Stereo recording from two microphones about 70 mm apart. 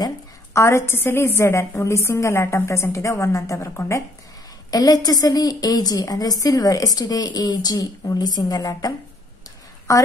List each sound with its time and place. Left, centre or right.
0.5 s a woman's voice: left
4.6 s a woman's voice: left
9.9 s a woman's voice: left